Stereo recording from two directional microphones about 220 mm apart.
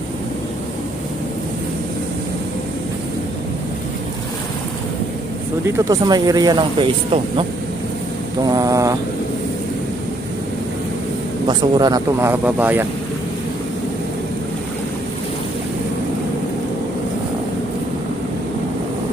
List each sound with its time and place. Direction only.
5.9 s speech: 15° right (ahead or behind)
8.5 s a sound: 15° right (ahead or behind)
11.4 s speech: 15° right (ahead or behind)